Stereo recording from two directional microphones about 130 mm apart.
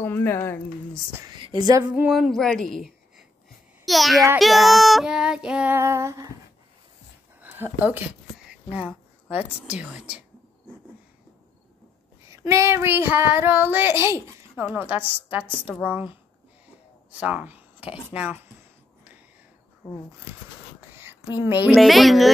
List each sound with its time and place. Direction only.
0.0 s a woman's voice: 20° left (ahead or behind)
1.2 s speech: 35° right (ahead or behind)
2.0 s a sound: 5° right (ahead or behind)
4.4 s child singing: centre (ahead or behind)
5.8 s female singing: 20° right (ahead or behind)
7.4 s speech: 15° right (ahead or behind)
8.5 s a sound: 10° right (ahead or behind)
9.7 s child singing: 10° right (ahead or behind)
12.3 s child singing: 25° right (ahead or behind)
17.1 s speech: 10° right (ahead or behind)
18.1 s child singing: 10° right (ahead or behind)
19.8 s speech: 25° left (ahead or behind)
20.9 s a sound: 15° right (ahead or behind)
21.7 s child singing: centre (ahead or behind)